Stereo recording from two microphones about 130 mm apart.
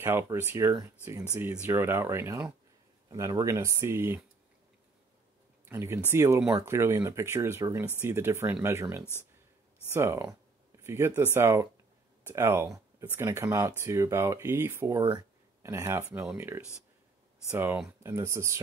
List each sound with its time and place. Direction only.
0.0 s speech: 20° right (ahead or behind)
5.7 s speech: 20° right (ahead or behind)